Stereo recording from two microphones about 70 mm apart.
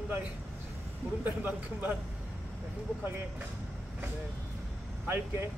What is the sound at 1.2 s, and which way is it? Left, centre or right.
Speech, right.